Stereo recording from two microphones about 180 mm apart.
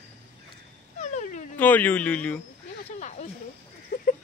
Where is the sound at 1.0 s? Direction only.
40° left (ahead or behind).